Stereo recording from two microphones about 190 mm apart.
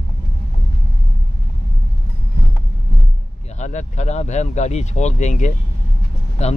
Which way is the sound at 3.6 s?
40° left (ahead or behind).